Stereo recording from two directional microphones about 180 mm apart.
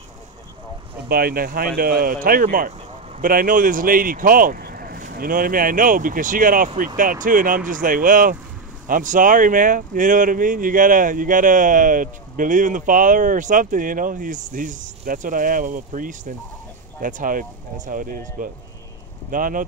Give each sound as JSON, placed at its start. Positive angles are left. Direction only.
{"t": 1.0, "sound": "speech", "side_deg": -55}